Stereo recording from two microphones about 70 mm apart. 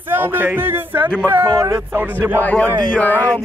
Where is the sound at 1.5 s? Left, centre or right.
Right.